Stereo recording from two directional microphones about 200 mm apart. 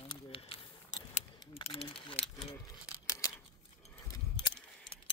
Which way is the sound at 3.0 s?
15° left (ahead or behind).